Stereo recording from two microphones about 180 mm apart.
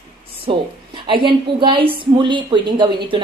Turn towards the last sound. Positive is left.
turn(degrees=-25)  # may be behind; listen again after turning